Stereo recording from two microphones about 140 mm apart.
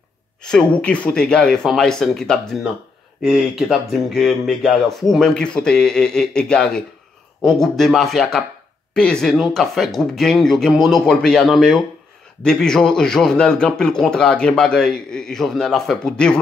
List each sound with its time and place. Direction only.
0.4 s a man's voice: 5° left (ahead or behind)